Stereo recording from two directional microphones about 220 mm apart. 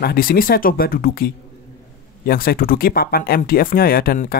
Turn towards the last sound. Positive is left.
turn(degrees=40)  # may be behind; listen again after turning